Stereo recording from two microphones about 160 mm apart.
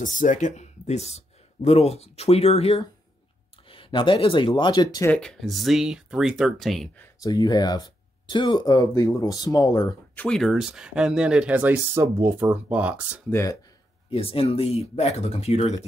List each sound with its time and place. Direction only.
0.0 s speech: 55° left (ahead or behind); by 5.1 s 25° left (ahead or behind)
5.1 s speech: 5° left (ahead or behind)
7.0 s speech: 25° left (ahead or behind)
10.1 s speech: 5° left (ahead or behind)
13.3 s speech: 15° left (ahead or behind)
14.1 s speech: 35° left (ahead or behind)